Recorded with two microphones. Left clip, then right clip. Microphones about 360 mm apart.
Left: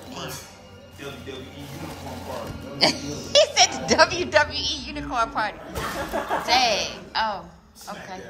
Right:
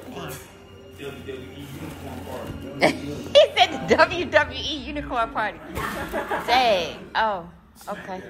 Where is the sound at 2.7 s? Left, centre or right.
Centre.